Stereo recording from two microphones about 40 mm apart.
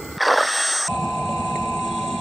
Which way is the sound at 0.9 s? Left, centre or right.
Left.